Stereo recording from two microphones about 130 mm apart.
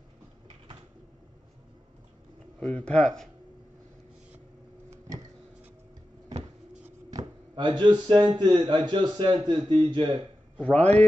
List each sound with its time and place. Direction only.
2.6 s speech: 10° left (ahead or behind)
4.9 s a sound: 20° right (ahead or behind)
7.1 s speech: 30° right (ahead or behind)
10.6 s a man's voice: 10° left (ahead or behind)